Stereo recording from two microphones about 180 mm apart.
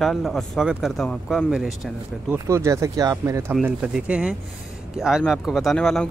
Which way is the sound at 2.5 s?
15° right (ahead or behind).